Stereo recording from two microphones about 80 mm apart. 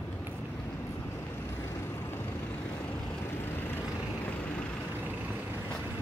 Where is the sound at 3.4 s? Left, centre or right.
Left.